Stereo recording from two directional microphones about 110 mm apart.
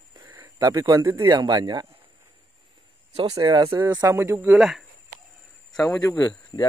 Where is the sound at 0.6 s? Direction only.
35° right (ahead or behind).